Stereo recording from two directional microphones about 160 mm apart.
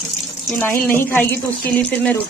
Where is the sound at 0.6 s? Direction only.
15° left (ahead or behind).